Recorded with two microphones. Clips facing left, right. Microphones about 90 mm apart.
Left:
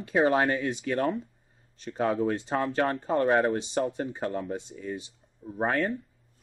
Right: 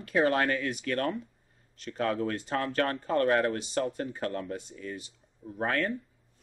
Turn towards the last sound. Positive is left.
turn(degrees=20)  # may be behind; listen again after turning